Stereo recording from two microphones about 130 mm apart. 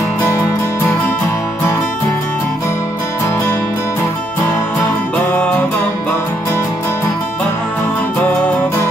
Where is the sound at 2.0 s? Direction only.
15° left (ahead or behind).